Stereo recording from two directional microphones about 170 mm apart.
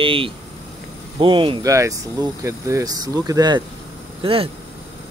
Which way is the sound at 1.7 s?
20° right (ahead or behind).